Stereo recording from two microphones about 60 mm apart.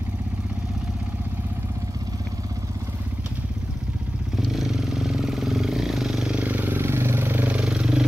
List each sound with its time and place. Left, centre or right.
4.4 s vehicle: centre
6.3 s vehicle: right
6.8 s vehicle: right
7.6 s vehicle: centre